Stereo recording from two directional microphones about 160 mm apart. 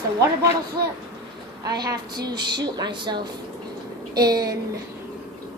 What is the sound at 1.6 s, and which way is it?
A woman's voice, 25° right (ahead or behind).